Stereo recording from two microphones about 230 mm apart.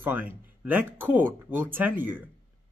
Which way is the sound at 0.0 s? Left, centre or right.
Centre.